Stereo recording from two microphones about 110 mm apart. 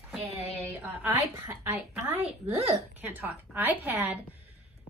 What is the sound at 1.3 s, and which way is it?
Speech, 20° right (ahead or behind).